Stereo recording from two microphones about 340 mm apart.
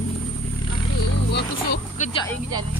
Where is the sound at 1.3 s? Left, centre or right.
Left.